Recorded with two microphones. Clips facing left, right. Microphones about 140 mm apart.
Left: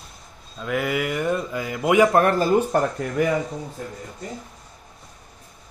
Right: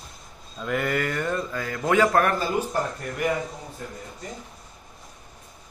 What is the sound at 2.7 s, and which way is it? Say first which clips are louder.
Speech: left 6 dB; 60° left (ahead or behind).